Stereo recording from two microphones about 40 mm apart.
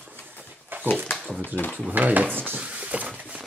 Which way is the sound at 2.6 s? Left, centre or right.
Right.